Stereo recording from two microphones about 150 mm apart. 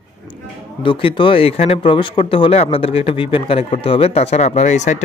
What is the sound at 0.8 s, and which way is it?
Speech, 35° left (ahead or behind).